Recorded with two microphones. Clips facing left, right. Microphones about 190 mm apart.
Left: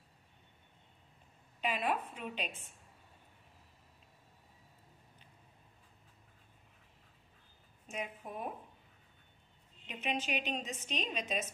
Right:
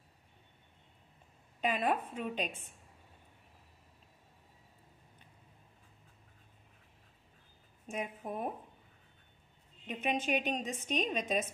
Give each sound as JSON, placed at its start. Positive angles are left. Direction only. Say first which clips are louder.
{"t": 1.6, "sound": "a woman's voice", "louder": "right 3 dB", "side_deg": -50}
{"t": 7.9, "sound": "a woman's voice", "louder": "right 4 dB", "side_deg": -50}
{"t": 9.8, "sound": "a woman's voice", "louder": "right 4 dB", "side_deg": -55}